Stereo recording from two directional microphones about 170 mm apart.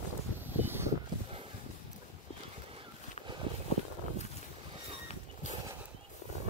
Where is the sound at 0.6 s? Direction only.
15° right (ahead or behind).